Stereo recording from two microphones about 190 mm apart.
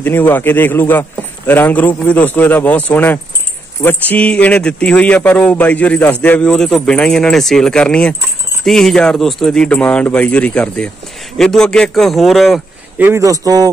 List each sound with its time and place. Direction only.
0.0 s speech: 10° left (ahead or behind)
13.1 s speech: 15° right (ahead or behind)